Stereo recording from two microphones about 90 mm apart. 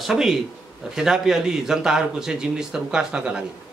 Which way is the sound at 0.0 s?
5° right (ahead or behind).